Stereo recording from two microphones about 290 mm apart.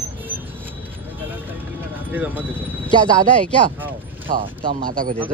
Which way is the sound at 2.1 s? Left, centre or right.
Centre.